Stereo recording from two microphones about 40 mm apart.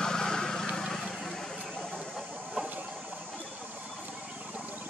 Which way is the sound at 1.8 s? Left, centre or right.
Centre.